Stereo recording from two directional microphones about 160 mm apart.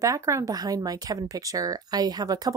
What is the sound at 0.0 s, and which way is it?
Speech, 20° right (ahead or behind).